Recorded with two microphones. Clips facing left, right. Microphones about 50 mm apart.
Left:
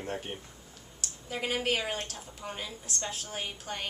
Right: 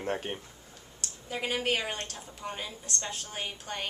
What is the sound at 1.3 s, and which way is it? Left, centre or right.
A woman's voice, centre.